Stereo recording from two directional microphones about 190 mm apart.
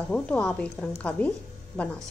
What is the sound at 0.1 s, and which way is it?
Speech, 5° left (ahead or behind).